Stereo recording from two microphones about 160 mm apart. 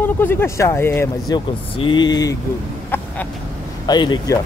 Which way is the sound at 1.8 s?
30° left (ahead or behind).